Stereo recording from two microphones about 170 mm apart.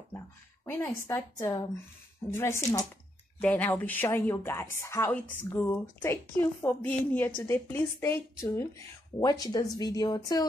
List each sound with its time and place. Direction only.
0.7 s a woman's voice: 15° left (ahead or behind)
3.3 s a woman's voice: 5° left (ahead or behind); by 10.4 s 25° left (ahead or behind)